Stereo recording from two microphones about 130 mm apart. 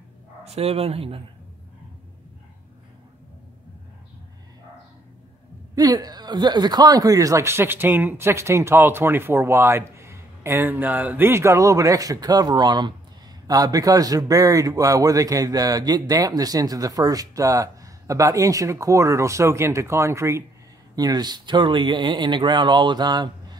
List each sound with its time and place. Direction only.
0.5 s speech: 50° right (ahead or behind)
5.8 s speech: 30° right (ahead or behind)